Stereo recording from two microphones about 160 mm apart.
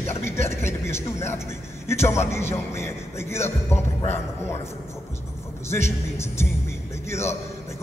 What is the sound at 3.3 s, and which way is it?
Speech, 40° left (ahead or behind).